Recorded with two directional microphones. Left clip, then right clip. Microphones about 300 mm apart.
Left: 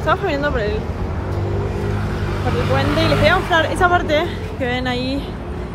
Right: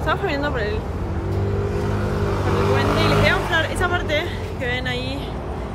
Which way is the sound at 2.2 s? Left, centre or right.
Centre.